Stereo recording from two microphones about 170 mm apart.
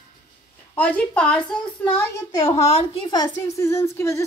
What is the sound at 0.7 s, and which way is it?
Speech, 10° left (ahead or behind).